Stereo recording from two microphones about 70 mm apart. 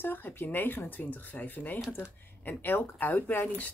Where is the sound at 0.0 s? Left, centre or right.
Left.